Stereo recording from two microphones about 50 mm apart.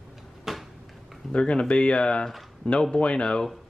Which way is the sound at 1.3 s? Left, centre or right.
Left.